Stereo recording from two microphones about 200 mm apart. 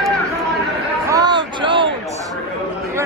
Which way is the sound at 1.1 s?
20° right (ahead or behind).